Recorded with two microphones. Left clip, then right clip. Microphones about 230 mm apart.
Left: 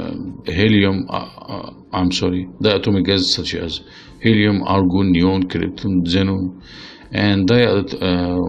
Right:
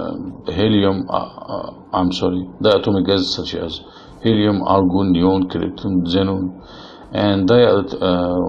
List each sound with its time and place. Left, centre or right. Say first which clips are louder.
0.5 s speech: even; left